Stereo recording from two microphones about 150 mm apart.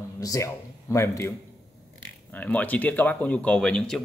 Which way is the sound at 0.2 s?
20° left (ahead or behind).